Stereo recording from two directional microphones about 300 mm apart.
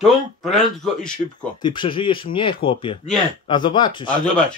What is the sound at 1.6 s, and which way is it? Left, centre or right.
Speech, centre.